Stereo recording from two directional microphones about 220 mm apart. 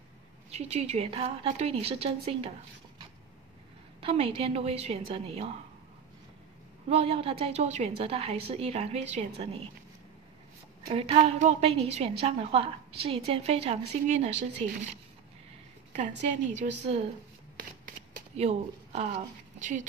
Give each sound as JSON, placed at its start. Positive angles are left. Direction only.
{"t": 0.5, "sound": "a woman's voice", "side_deg": -30}
{"t": 4.0, "sound": "a woman's voice", "side_deg": -25}
{"t": 6.9, "sound": "a woman's voice", "side_deg": -25}
{"t": 10.9, "sound": "a woman's voice", "side_deg": -25}
{"t": 16.3, "sound": "a woman's voice", "side_deg": -35}
{"t": 18.3, "sound": "speech", "side_deg": -30}